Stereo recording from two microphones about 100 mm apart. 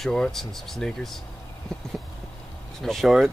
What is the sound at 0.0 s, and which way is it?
Speech, 5° left (ahead or behind).